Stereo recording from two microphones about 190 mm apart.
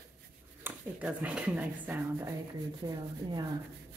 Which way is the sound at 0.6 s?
10° right (ahead or behind).